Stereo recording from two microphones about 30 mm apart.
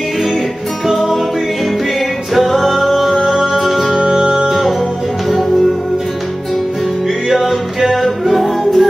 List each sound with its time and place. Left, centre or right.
2.3 s music: centre
4.1 s music: centre
4.5 s music: centre
7.3 s music: centre